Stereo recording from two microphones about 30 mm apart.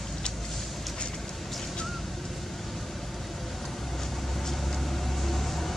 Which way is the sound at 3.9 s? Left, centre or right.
Centre.